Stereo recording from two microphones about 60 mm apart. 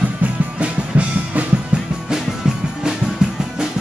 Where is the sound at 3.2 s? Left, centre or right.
Centre.